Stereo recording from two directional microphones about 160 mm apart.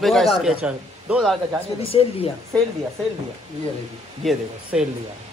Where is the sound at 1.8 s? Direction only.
35° left (ahead or behind).